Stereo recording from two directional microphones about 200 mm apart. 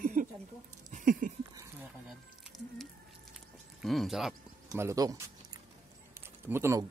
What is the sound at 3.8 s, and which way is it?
Speech, centre (ahead or behind).